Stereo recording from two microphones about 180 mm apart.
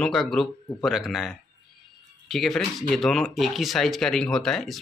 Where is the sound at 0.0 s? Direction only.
5° left (ahead or behind).